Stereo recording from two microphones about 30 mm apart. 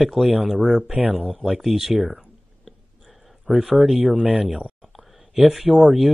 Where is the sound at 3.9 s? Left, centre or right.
Right.